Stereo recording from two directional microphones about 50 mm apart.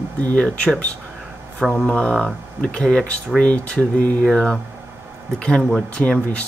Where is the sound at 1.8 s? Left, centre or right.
Left.